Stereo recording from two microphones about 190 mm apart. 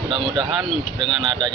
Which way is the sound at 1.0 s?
Centre (ahead or behind).